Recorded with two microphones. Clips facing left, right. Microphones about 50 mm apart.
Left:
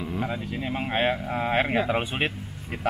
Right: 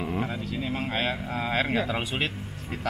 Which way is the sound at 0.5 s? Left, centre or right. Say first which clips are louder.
Left 1 dB; left.